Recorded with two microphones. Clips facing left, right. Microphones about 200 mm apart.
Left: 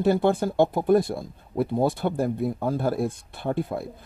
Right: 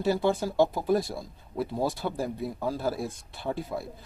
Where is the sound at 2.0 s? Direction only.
45° left (ahead or behind).